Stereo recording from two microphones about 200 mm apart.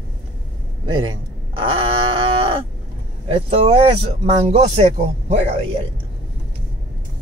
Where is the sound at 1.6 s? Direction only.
25° right (ahead or behind).